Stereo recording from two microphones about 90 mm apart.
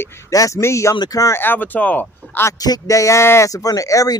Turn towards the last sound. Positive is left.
turn(degrees=40)  # may be behind; listen again after turning